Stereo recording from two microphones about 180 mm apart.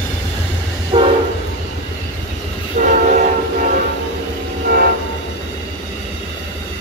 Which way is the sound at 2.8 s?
45° right (ahead or behind).